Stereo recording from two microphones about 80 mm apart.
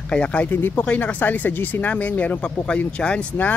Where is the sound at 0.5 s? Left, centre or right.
Left.